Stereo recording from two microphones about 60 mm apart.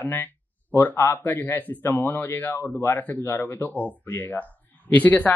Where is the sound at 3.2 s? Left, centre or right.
Left.